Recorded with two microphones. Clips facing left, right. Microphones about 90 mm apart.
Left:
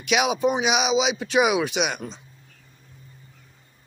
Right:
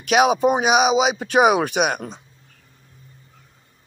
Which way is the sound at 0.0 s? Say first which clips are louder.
Right 5 dB; 45° right (ahead or behind).